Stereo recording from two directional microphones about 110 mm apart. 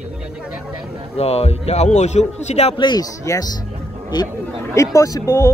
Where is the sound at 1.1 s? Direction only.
70° left (ahead or behind).